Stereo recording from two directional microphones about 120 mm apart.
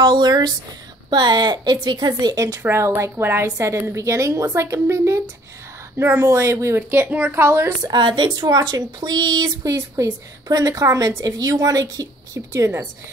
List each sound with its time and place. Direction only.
0.0 s a woman's voice: 35° right (ahead or behind); by 7.7 s 20° right (ahead or behind)
7.8 s a woman's voice: 40° right (ahead or behind)